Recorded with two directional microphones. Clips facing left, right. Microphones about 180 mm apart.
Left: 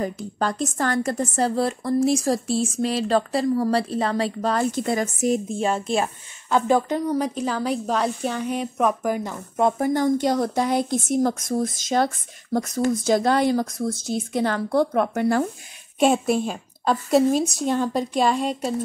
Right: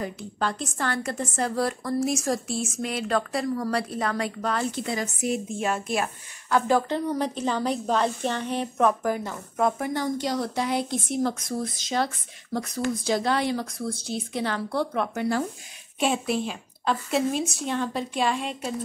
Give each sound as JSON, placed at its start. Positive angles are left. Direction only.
{"t": 0.0, "sound": "speech", "side_deg": 40}
{"t": 1.5, "sound": "a woman's voice", "side_deg": 25}
{"t": 9.7, "sound": "speech", "side_deg": 40}
{"t": 10.0, "sound": "speech", "side_deg": 55}